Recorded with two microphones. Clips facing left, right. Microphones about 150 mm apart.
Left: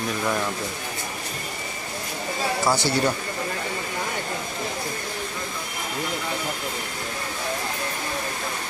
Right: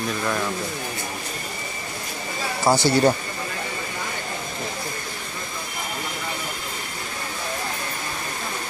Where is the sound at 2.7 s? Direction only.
20° right (ahead or behind).